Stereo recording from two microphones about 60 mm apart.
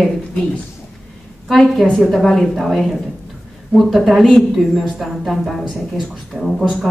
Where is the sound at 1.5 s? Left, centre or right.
Centre.